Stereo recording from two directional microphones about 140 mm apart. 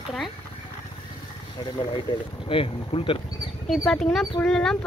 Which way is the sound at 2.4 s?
40° left (ahead or behind).